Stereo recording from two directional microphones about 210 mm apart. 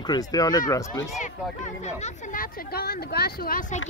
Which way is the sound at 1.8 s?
35° left (ahead or behind).